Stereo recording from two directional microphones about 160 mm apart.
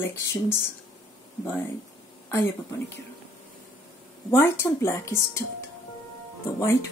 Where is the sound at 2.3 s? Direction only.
15° left (ahead or behind).